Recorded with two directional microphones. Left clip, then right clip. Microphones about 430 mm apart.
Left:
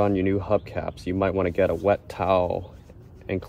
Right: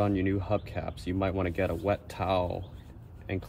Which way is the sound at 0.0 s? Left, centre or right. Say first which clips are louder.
Left 6 dB; centre.